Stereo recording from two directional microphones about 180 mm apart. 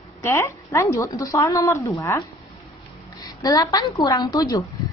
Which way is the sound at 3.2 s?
20° left (ahead or behind).